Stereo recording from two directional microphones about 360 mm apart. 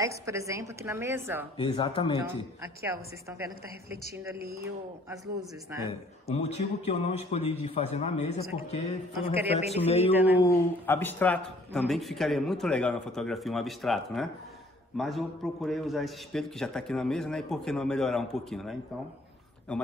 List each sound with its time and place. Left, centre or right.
0.0 s a woman's voice: centre
1.6 s a man's voice: centre
2.8 s a woman's voice: centre
4.6 s a man's voice: centre
5.9 s a man's voice: centre
10.1 s a man's voice: centre
10.4 s a man's voice: centre